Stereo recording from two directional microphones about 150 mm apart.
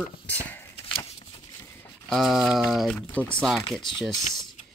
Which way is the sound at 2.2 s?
Centre (ahead or behind).